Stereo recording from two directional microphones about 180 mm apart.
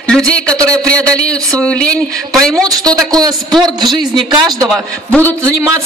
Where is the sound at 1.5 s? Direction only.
5° left (ahead or behind).